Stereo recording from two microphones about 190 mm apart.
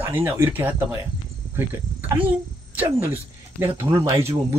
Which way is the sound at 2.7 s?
10° right (ahead or behind).